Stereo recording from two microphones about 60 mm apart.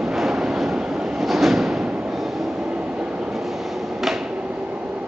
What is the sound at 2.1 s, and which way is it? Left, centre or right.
Train, centre.